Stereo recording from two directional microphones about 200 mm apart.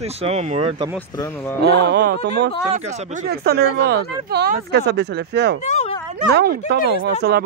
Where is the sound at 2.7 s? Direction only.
35° right (ahead or behind).